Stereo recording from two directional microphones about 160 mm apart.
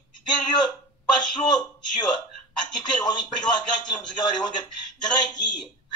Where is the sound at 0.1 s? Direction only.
25° left (ahead or behind).